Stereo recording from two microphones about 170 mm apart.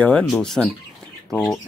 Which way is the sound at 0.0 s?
5° left (ahead or behind).